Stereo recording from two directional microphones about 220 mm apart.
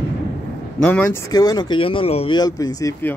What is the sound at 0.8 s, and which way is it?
Speech, 5° left (ahead or behind).